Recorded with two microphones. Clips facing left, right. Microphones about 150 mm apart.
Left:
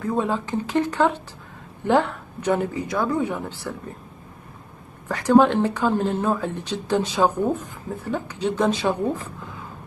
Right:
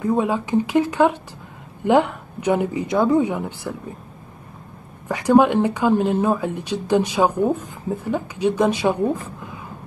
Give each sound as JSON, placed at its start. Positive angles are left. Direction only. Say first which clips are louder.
{"t": 0.0, "sound": "speech", "louder": "right 3 dB", "side_deg": -15}
{"t": 5.0, "sound": "speech", "louder": "right 1 dB", "side_deg": -15}